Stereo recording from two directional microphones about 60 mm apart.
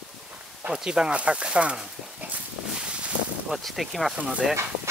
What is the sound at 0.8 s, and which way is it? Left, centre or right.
Speech, centre.